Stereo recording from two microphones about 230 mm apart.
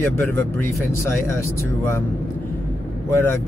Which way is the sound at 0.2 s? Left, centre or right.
Centre.